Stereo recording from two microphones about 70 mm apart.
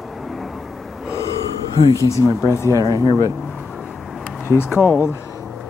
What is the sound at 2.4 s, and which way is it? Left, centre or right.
Speech, left.